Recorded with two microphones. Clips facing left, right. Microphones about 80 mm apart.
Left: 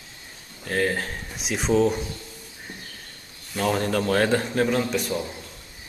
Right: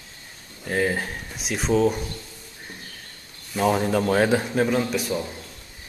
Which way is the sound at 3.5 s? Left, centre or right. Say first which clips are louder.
Right 3 dB; centre.